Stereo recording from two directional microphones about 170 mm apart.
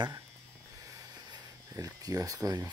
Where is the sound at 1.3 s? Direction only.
20° right (ahead or behind).